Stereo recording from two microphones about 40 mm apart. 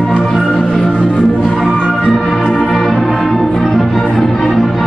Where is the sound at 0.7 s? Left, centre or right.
Left.